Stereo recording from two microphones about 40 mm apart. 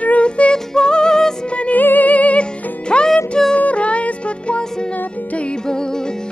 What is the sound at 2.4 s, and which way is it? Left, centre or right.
Music, left.